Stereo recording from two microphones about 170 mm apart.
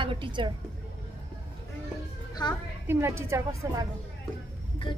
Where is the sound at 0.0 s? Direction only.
30° right (ahead or behind).